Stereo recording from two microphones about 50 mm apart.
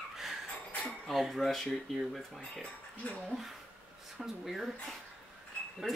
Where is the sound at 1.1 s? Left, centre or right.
Centre.